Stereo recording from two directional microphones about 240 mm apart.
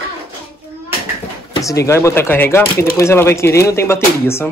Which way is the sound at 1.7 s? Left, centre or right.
Centre.